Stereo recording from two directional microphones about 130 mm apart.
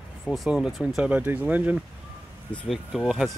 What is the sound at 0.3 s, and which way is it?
Speech, centre (ahead or behind).